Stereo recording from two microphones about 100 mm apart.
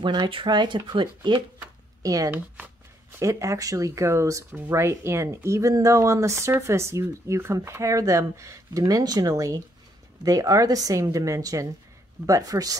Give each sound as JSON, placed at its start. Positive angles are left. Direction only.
{"t": 0.0, "sound": "speech", "side_deg": -50}
{"t": 2.0, "sound": "speech", "side_deg": -35}